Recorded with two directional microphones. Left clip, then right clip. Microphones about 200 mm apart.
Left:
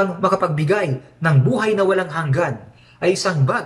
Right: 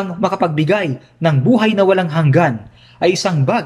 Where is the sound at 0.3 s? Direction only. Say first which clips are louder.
Right 2 dB; 45° right (ahead or behind).